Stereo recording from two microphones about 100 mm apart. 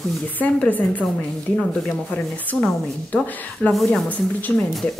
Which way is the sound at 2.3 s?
15° left (ahead or behind).